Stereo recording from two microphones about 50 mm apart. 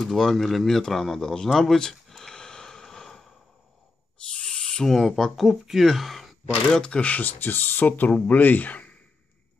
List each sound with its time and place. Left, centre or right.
0.0 s a sound: centre
4.3 s owl: centre
4.9 s speech: centre
6.7 s speech: centre